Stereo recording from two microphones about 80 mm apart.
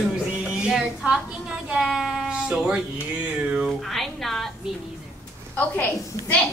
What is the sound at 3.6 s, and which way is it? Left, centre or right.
Speech, centre.